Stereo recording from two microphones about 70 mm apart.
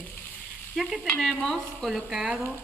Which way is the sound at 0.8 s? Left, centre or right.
Centre.